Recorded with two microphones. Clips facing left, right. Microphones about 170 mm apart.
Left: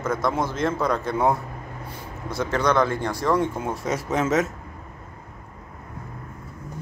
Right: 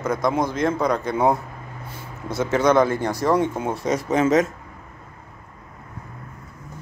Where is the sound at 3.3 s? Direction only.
25° right (ahead or behind).